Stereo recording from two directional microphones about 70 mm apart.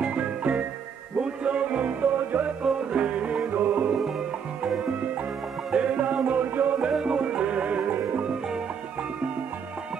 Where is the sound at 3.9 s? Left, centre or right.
Centre.